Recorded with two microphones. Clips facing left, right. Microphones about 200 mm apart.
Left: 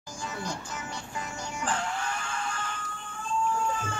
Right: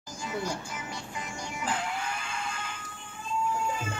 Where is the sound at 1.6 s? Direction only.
15° right (ahead or behind).